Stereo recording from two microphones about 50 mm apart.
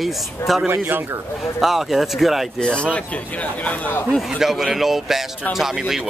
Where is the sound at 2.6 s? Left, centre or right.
Left.